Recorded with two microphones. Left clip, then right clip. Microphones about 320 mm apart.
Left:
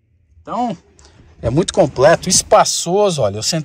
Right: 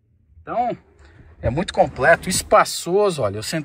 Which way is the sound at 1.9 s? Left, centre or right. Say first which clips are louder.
Left 5 dB; centre.